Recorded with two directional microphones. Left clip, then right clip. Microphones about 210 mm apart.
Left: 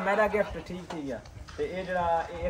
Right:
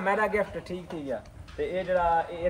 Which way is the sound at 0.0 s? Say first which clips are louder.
Even; 5° right (ahead or behind).